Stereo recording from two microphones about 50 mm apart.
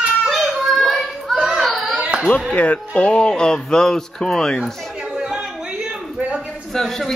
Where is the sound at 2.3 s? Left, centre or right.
Left; by 4.6 s centre.